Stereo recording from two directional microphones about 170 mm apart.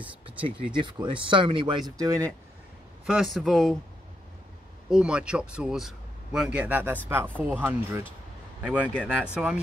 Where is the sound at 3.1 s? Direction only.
Centre (ahead or behind).